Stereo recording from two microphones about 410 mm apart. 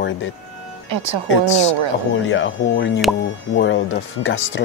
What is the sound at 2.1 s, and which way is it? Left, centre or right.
Speech, left.